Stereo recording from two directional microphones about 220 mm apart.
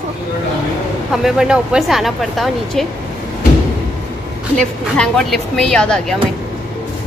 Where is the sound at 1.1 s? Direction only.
Centre (ahead or behind).